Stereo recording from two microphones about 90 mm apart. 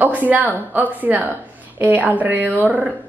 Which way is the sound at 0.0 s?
15° right (ahead or behind).